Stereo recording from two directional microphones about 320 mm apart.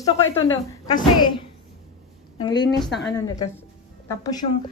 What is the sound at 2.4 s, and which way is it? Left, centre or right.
A woman's voice, centre.